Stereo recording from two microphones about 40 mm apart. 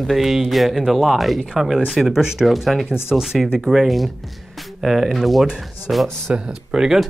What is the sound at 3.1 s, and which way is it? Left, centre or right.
Speech, centre.